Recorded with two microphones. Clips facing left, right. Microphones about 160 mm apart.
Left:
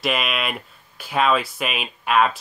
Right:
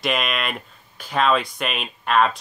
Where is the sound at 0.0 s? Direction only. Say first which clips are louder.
Even; 5° left (ahead or behind).